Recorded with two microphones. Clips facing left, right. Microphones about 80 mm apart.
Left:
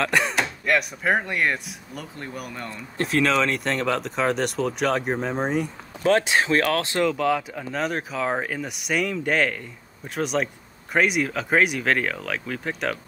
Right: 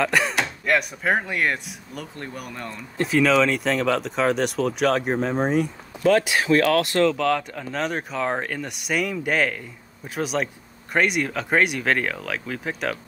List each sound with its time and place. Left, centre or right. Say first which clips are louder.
0.0 s speech: right 1 dB; centre
6.0 s speech: right 1 dB; left
7.0 s speech: right 2 dB; centre